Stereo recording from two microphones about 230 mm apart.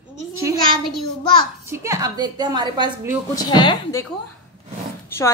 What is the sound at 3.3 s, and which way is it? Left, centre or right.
Speech, centre.